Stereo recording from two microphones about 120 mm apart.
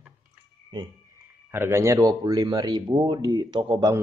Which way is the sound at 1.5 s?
20° right (ahead or behind).